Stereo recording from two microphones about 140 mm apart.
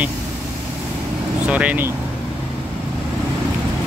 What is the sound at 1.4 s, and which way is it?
Speech, 10° right (ahead or behind).